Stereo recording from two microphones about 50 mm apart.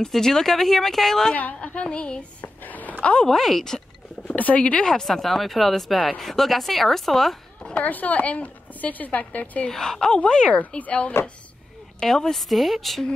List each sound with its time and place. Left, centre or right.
0.0 s speech: centre
1.3 s a woman's voice: left
2.6 s a sound: left
3.0 s a woman's voice: left
3.3 s speech: centre
4.3 s speech: left
4.8 s speech: centre
7.8 s speech: left
9.7 s a woman's voice: centre
10.5 s a woman's voice: left
12.0 s speech: centre